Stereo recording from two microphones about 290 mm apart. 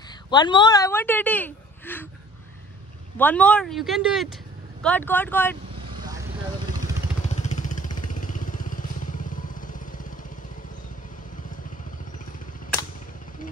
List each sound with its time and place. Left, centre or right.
0.3 s a woman's voice: centre
3.2 s speech: centre
7.2 s vehicle: left